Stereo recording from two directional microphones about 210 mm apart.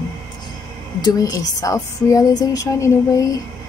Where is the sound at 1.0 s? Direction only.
15° left (ahead or behind).